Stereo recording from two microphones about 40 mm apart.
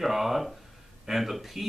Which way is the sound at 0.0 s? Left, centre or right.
Centre.